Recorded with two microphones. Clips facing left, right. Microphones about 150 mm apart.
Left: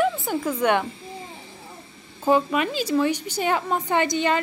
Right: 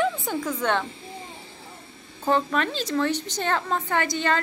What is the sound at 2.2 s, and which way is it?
A woman's voice, 10° left (ahead or behind).